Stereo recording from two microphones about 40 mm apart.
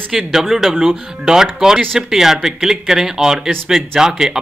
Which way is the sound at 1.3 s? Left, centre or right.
Centre.